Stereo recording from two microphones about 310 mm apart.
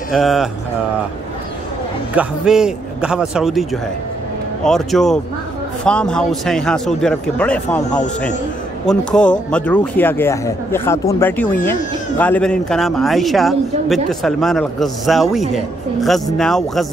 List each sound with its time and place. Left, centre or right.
0.1 s a man's voice: centre
2.1 s a man's voice: centre